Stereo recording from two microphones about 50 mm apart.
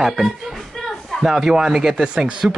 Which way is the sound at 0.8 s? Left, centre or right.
Centre.